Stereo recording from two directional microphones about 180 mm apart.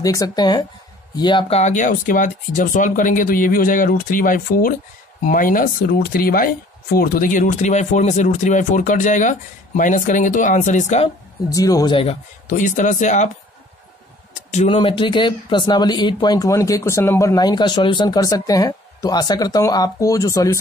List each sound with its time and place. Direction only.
0.0 s speech: 20° left (ahead or behind)
1.6 s speech: 45° left (ahead or behind)
11.4 s speech: 20° left (ahead or behind)
12.4 s speech: 45° left (ahead or behind)
14.7 s speech: 30° left (ahead or behind)